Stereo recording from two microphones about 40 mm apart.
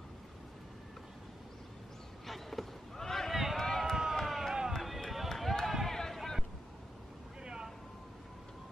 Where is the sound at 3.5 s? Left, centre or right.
Centre.